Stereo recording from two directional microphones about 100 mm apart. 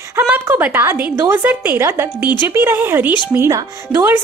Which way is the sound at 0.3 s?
15° right (ahead or behind).